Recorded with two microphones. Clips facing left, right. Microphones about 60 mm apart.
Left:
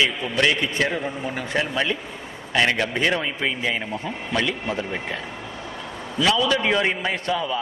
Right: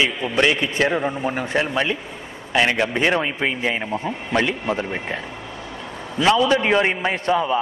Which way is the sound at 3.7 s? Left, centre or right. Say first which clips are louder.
Right 3 dB; right.